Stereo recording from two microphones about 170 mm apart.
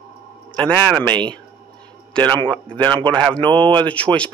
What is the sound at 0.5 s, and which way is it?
Speech, 5° left (ahead or behind).